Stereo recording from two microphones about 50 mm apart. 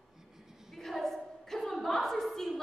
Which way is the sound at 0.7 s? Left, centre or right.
Centre.